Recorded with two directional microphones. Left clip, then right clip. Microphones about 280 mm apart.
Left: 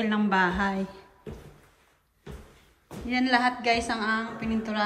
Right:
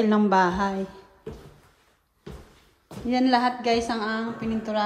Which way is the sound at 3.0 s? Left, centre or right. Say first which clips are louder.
Right 2 dB; centre.